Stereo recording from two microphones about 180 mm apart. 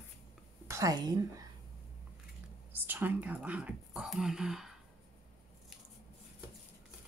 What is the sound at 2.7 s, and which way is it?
Speech, 10° right (ahead or behind).